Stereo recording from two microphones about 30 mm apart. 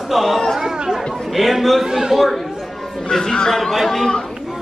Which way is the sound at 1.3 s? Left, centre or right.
Centre.